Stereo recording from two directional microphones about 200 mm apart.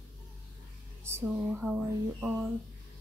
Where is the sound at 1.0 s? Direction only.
10° right (ahead or behind).